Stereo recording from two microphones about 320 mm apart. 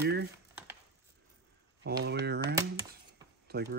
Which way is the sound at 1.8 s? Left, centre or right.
Right.